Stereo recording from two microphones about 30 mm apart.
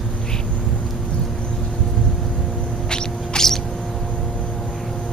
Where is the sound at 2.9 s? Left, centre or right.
Left.